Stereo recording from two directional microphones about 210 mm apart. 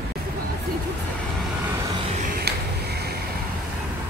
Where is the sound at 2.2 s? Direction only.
50° right (ahead or behind).